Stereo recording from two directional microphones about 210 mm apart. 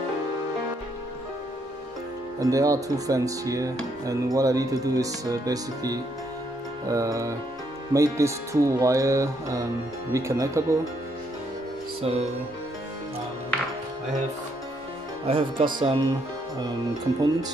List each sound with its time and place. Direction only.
2.4 s speech: 15° right (ahead or behind)
15.2 s speech: 25° right (ahead or behind)